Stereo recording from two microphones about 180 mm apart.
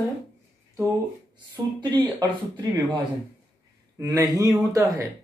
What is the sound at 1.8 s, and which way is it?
Speech, 25° right (ahead or behind).